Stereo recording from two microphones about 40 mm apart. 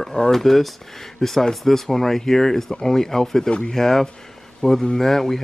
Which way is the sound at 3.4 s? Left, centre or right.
Left.